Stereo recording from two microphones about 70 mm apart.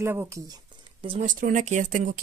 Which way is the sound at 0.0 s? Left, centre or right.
Right.